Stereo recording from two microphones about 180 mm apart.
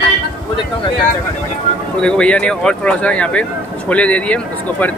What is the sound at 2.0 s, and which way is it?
Speech, 5° left (ahead or behind).